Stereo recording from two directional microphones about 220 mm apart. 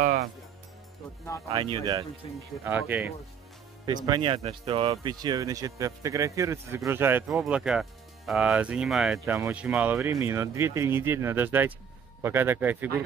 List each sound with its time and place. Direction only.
0.0 s music: 45° right (ahead or behind)
1.5 s speech: 20° right (ahead or behind)
2.2 s speech: 20° left (ahead or behind)
2.6 s speech: 10° right (ahead or behind)
3.8 s speech: 20° right (ahead or behind)